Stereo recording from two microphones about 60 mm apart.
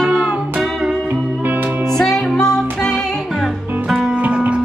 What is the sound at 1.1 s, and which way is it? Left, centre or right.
Music, right.